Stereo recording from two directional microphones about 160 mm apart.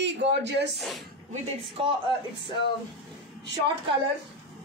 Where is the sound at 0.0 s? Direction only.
90° right.